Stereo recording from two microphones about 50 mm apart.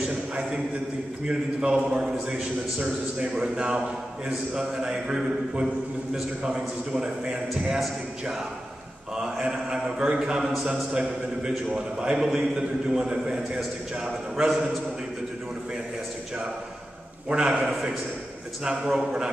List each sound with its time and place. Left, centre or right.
0.1 s a sound: centre
1.2 s a man's voice: centre
9.1 s a man's voice: centre
14.5 s a man's voice: centre
17.3 s a man's voice: centre